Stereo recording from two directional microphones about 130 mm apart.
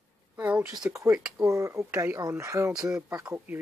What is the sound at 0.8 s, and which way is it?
Speech, 20° right (ahead or behind).